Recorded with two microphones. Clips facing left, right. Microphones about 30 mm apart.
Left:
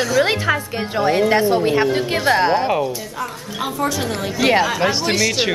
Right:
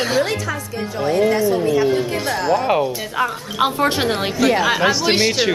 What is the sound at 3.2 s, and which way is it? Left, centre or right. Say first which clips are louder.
A woman's voice: right 10 dB; right.